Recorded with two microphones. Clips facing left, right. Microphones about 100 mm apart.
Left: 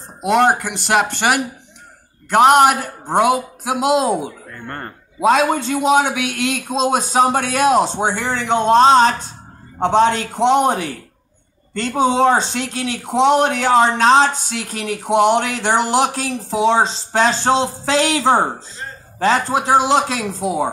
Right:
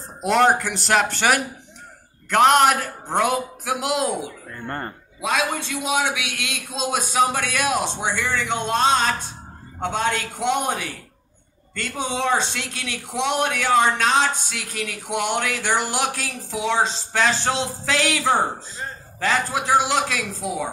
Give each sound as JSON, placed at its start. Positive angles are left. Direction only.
{"t": 0.2, "sound": "speech", "side_deg": 5}
{"t": 2.2, "sound": "a man's voice", "side_deg": 15}
{"t": 4.6, "sound": "speech", "side_deg": -5}
{"t": 5.2, "sound": "a man's voice", "side_deg": 35}
{"t": 8.3, "sound": "a man's voice", "side_deg": 45}
{"t": 8.5, "sound": "a man's voice", "side_deg": 30}
{"t": 11.8, "sound": "speech", "side_deg": 35}